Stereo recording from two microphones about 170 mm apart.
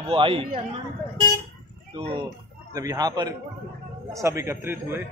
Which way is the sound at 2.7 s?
20° right (ahead or behind).